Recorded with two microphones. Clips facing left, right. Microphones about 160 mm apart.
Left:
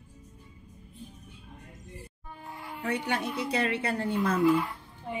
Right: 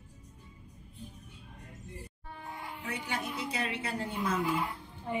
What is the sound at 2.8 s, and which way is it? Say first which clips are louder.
A woman's voice: left 8 dB; 65° left (ahead or behind).